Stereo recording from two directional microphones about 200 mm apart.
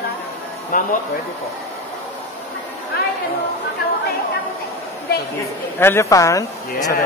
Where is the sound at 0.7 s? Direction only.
45° left (ahead or behind).